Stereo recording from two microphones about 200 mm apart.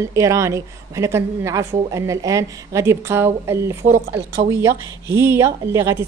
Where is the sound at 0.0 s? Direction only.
15° right (ahead or behind).